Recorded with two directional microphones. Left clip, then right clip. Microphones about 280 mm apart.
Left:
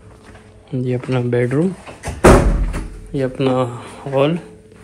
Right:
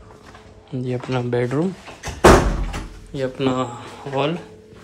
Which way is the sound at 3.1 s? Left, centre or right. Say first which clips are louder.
Left 4 dB; centre.